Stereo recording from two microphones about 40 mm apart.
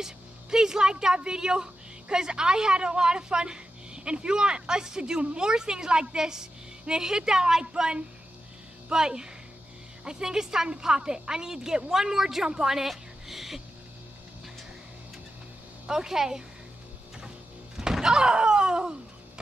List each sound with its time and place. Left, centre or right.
0.0 s a woman's voice: centre
15.9 s a woman's voice: centre
17.7 s thunk: centre